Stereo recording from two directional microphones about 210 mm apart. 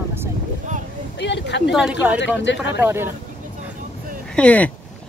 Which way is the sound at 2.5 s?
55° left (ahead or behind).